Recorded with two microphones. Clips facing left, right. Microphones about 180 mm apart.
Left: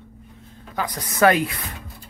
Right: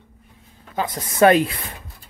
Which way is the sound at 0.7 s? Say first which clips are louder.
Right 2 dB; 25° right (ahead or behind).